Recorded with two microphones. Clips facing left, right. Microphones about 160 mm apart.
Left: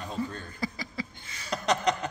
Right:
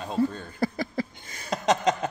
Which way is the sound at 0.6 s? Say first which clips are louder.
Right 8 dB; 50° right (ahead or behind).